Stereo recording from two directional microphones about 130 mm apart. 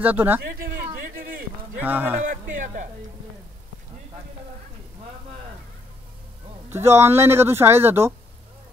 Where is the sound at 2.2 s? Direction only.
90° right.